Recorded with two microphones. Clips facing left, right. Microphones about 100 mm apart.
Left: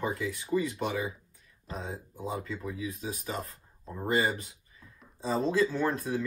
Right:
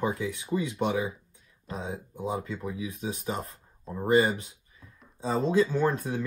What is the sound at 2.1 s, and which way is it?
Speech, 20° right (ahead or behind).